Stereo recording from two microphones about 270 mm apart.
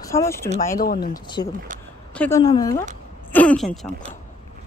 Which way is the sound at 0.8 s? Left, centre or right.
Left.